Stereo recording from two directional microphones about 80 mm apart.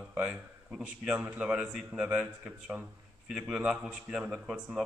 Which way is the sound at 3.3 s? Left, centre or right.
Centre.